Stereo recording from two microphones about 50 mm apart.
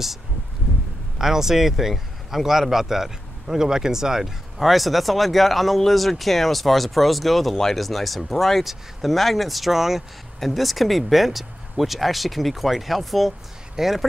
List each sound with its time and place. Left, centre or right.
1.1 s speech: centre